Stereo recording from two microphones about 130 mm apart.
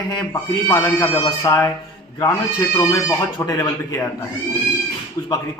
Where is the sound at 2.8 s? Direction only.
25° left (ahead or behind).